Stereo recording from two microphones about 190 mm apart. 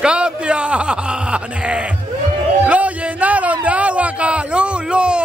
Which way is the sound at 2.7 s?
10° right (ahead or behind).